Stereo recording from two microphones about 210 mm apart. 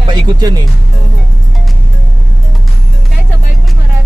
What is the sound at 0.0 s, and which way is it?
Speech, 20° right (ahead or behind).